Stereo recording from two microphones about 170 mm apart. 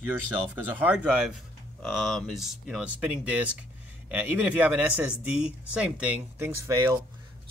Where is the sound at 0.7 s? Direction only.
5° right (ahead or behind).